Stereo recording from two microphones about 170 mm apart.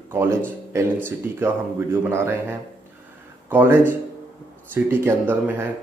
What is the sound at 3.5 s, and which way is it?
Speech, 10° right (ahead or behind).